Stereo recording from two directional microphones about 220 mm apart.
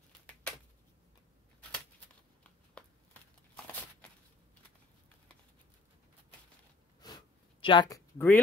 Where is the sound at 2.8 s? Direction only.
5° left (ahead or behind).